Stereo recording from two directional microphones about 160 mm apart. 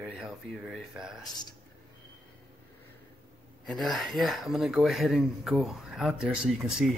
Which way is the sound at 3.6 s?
Centre (ahead or behind).